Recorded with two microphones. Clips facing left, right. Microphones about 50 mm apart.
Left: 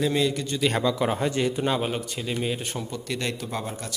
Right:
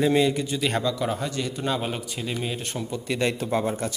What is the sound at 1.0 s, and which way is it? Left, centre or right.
Speech, left.